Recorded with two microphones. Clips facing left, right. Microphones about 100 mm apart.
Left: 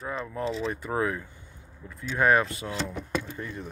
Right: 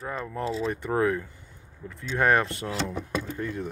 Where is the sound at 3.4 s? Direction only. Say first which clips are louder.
Right 5 dB; 65° right (ahead or behind).